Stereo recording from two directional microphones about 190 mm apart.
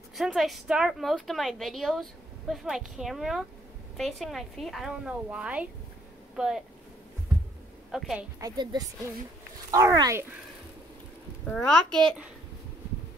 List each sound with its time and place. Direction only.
0.1 s a woman's voice: centre (ahead or behind)
7.9 s a woman's voice: 5° right (ahead or behind)
8.4 s a woman's voice: 20° right (ahead or behind)
11.4 s a woman's voice: 5° left (ahead or behind)